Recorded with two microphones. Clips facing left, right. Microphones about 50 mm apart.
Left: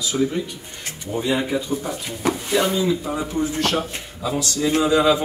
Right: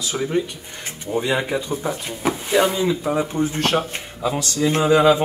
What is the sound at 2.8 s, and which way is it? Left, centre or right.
A man's voice, right.